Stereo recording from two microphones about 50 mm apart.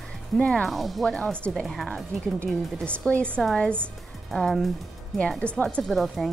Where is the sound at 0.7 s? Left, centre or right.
Centre.